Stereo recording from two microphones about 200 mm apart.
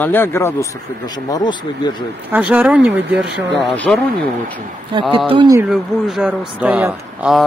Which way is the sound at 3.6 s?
5° left (ahead or behind).